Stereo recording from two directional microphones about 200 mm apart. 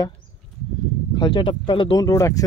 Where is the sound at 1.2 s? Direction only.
25° left (ahead or behind).